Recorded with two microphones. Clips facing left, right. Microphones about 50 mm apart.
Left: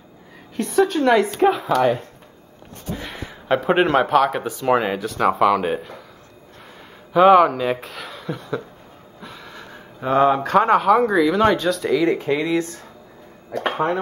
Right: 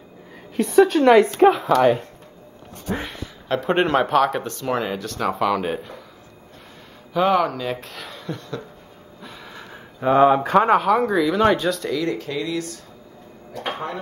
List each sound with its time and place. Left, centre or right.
0.6 s a woman's voice: centre
2.9 s speech: right
3.4 s speech: centre
7.2 s speech: centre
7.8 s chuckle: centre
9.2 s speech: centre
11.8 s speech: centre; by 13.9 s left